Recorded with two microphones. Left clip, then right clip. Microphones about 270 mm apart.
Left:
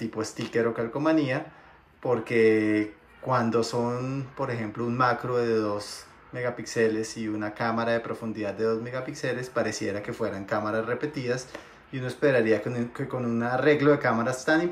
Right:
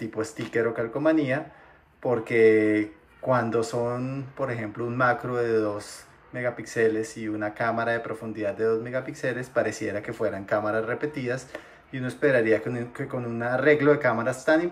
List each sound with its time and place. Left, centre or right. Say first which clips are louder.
0.0 s speech: right 1 dB; centre